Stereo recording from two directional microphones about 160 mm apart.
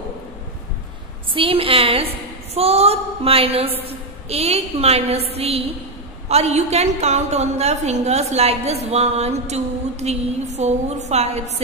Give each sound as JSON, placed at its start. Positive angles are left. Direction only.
{"t": 1.3, "sound": "a woman's voice", "side_deg": -35}